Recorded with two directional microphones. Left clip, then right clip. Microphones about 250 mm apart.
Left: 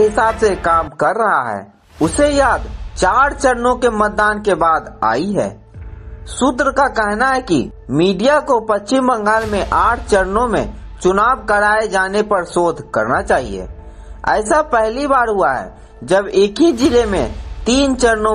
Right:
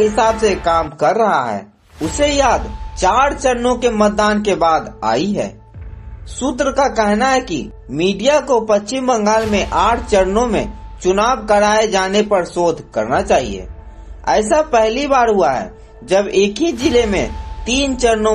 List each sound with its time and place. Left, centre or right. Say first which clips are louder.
0.1 s speech: even; centre
14.5 s speech: right 1 dB; centre